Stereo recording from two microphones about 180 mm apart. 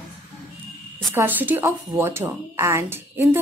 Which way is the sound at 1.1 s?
10° right (ahead or behind).